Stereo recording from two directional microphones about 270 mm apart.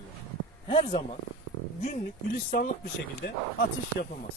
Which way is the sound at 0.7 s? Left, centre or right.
Left.